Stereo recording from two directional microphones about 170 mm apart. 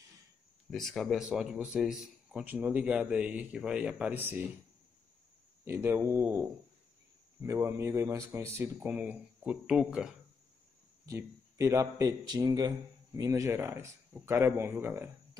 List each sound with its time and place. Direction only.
0.7 s speech: centre (ahead or behind)
5.7 s speech: 10° right (ahead or behind)
11.1 s speech: 20° right (ahead or behind)